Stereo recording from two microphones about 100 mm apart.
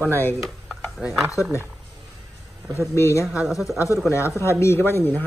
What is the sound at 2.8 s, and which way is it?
Speech, 30° left (ahead or behind).